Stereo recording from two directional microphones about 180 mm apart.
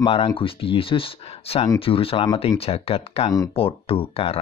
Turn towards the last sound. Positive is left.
turn(degrees=30)  # may be behind; listen again after turning